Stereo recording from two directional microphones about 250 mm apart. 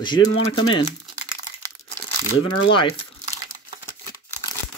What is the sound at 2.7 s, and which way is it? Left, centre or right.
Speech, left.